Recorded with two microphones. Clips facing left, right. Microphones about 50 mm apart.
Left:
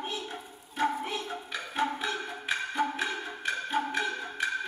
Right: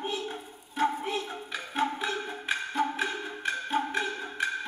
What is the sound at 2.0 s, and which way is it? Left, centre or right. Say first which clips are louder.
Music: right 1 dB; centre.